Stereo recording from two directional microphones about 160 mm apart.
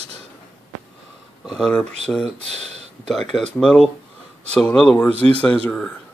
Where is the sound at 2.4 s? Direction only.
40° right (ahead or behind).